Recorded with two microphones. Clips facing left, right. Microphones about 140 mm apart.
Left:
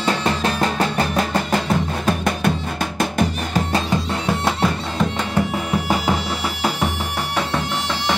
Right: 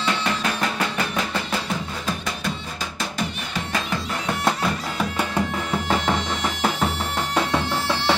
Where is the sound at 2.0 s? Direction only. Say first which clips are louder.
Left 9 dB; 60° left (ahead or behind).